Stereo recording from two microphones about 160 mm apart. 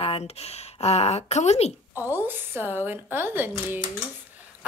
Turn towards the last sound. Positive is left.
turn(degrees=-15)  # may be behind; listen again after turning